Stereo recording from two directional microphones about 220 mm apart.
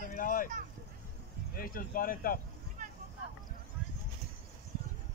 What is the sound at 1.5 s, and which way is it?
Speech, 40° left (ahead or behind).